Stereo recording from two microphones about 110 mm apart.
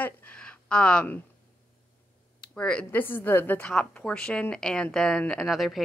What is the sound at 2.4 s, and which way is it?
Speech, 10° left (ahead or behind).